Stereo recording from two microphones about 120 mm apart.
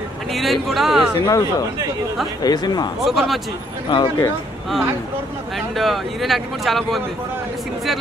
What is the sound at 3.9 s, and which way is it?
Speech, 40° left (ahead or behind).